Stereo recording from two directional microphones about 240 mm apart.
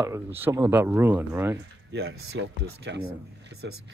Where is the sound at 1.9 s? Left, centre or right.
Right.